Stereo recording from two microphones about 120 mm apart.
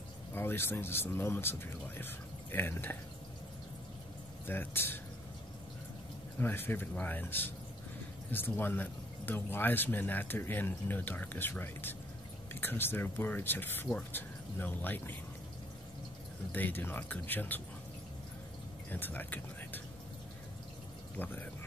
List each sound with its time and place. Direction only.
0.3 s speech: 20° left (ahead or behind)
4.5 s speech: 15° left (ahead or behind)
6.4 s speech: 15° left (ahead or behind)
16.5 s speech: 15° left (ahead or behind)
18.9 s speech: 15° left (ahead or behind)
21.2 s speech: 15° left (ahead or behind)